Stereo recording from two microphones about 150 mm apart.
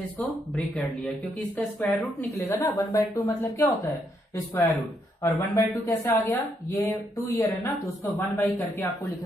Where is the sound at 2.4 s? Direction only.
15° left (ahead or behind).